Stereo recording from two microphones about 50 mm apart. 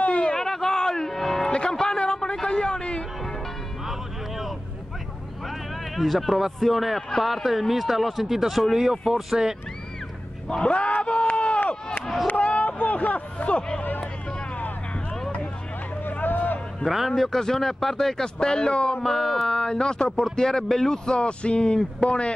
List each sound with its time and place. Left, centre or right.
0.0 s a sound: left
0.3 s music: centre
1.5 s music: centre
5.9 s speech: centre
10.5 s a sound: left
12.3 s hubbub: left
16.1 s a sound: left
16.8 s speech: centre
17.1 s speech: centre